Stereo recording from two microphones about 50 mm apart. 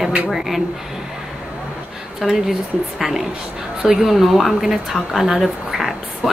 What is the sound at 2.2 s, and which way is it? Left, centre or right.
A woman's voice, centre.